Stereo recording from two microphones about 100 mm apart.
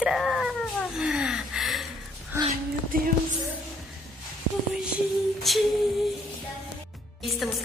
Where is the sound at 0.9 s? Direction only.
5° right (ahead or behind).